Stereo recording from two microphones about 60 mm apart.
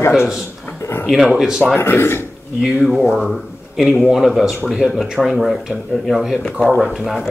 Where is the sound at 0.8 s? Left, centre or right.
Left.